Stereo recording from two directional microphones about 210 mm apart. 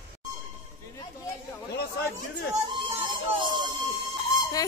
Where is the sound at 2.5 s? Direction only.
25° right (ahead or behind).